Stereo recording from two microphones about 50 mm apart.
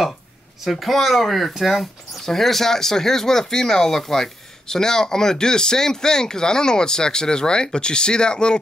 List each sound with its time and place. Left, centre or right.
0.7 s speech: centre